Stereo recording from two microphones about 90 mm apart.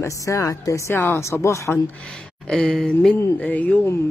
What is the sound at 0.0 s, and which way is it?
Speech, 35° left (ahead or behind).